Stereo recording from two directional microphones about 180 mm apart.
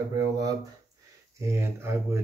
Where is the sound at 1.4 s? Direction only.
15° right (ahead or behind).